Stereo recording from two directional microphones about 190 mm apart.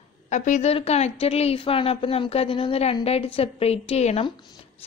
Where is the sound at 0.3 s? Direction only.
35° left (ahead or behind).